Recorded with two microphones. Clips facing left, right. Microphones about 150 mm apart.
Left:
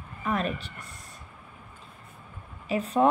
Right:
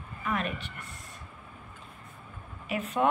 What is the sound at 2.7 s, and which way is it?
Speech, 35° left (ahead or behind).